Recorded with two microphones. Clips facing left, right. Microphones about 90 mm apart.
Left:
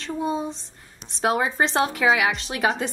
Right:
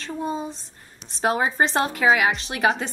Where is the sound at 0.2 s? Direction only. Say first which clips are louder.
Left 2 dB; centre (ahead or behind).